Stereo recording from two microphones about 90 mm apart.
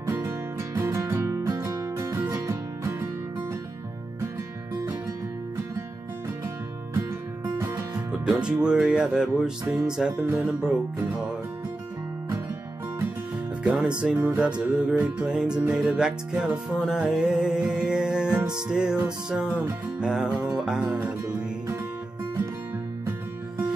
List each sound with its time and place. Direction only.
0.0 s music: 25° right (ahead or behind)
7.5 s music: 30° right (ahead or behind)
8.3 s music: 10° right (ahead or behind)
13.7 s music: 10° right (ahead or behind)